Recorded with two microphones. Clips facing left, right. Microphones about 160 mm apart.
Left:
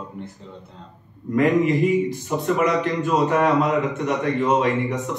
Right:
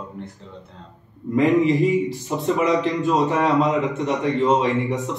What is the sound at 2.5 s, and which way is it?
Speech, 20° right (ahead or behind).